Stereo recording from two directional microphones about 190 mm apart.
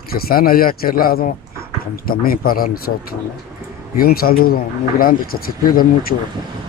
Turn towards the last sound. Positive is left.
turn(degrees=50)  # may be behind; listen again after turning